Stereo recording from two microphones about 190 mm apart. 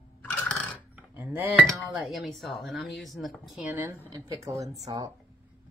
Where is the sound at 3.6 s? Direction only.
10° right (ahead or behind).